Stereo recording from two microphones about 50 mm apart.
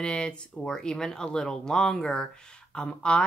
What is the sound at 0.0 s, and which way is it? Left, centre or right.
Speech, centre.